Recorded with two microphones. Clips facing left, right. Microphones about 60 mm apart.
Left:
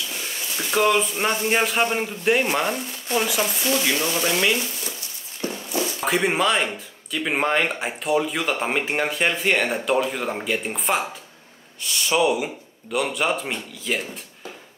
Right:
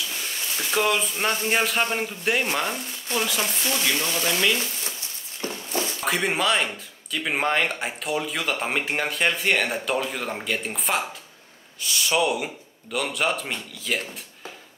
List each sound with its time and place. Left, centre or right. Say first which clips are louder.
0.1 s speech: left 1 dB; centre
5.4 s walk: left 2 dB; left
6.0 s speech: left 3 dB; centre